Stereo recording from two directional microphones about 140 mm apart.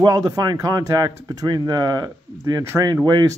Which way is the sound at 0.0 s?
30° right (ahead or behind).